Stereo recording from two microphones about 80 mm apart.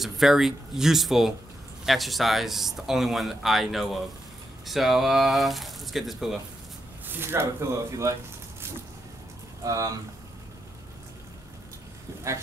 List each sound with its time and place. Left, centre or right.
0.0 s speech: centre
7.1 s speech: right
7.9 s a sound: right
9.6 s speech: right